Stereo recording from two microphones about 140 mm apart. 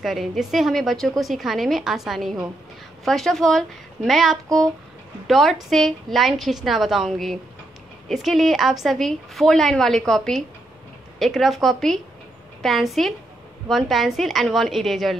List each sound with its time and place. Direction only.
0.0 s a woman's voice: centre (ahead or behind)